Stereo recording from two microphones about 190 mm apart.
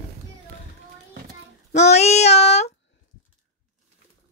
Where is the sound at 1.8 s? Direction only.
35° left (ahead or behind).